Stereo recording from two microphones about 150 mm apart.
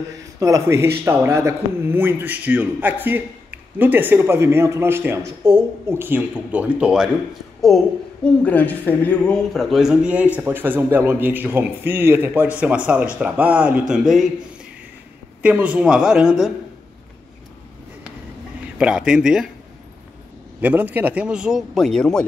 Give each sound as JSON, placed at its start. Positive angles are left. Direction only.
{"t": 0.4, "sound": "a woman's voice", "side_deg": -20}
{"t": 5.4, "sound": "speech", "side_deg": -25}
{"t": 5.9, "sound": "a woman's voice", "side_deg": -15}
{"t": 7.6, "sound": "a woman's voice", "side_deg": 5}
{"t": 15.4, "sound": "speech", "side_deg": -10}
{"t": 18.8, "sound": "speech", "side_deg": -5}
{"t": 20.6, "sound": "speech", "side_deg": -10}